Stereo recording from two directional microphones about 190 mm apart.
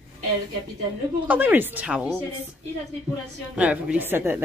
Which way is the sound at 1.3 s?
10° right (ahead or behind).